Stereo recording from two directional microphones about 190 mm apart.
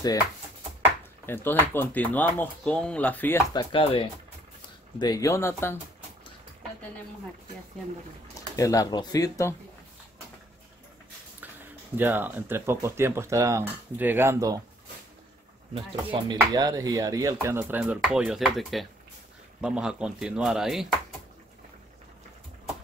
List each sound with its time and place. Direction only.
1.2 s speech: 10° left (ahead or behind)
3.5 s speech: 25° left (ahead or behind)
8.4 s speech: 15° left (ahead or behind)
12.0 s speech: 10° right (ahead or behind)
15.7 s speech: 25° right (ahead or behind); by 20.9 s centre (ahead or behind)